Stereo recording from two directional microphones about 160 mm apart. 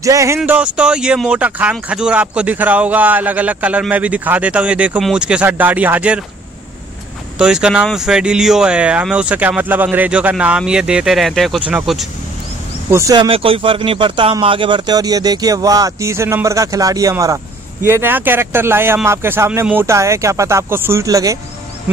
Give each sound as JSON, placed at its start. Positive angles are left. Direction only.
{"t": 0.0, "sound": "speech", "side_deg": -20}
{"t": 0.4, "sound": "speech", "side_deg": -5}
{"t": 7.3, "sound": "speech", "side_deg": -5}
{"t": 12.9, "sound": "speech", "side_deg": -20}